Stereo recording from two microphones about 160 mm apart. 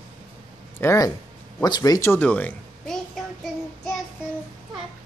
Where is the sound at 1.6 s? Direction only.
25° left (ahead or behind); by 3.9 s centre (ahead or behind).